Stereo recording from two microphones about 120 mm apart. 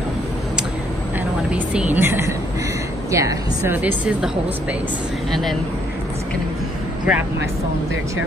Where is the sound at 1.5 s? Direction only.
15° right (ahead or behind).